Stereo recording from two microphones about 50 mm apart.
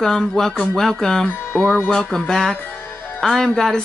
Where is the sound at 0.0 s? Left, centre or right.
Centre.